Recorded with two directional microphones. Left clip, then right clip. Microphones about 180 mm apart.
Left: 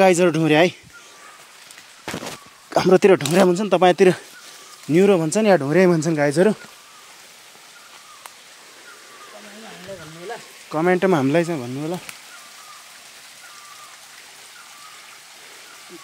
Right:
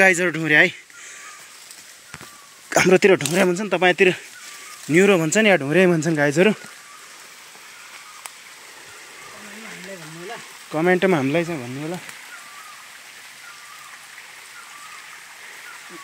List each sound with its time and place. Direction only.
0.0 s speech: 10° left (ahead or behind)
2.7 s a sound: centre (ahead or behind)
3.0 s speech: 5° left (ahead or behind)
3.6 s speech: 25° left (ahead or behind)
4.8 s speech: 10° left (ahead or behind)
5.6 s speech: 10° right (ahead or behind)
10.7 s speech: centre (ahead or behind)
11.1 s speech: 20° left (ahead or behind)